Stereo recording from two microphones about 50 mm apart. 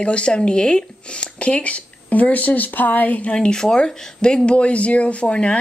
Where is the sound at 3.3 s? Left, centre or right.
Centre.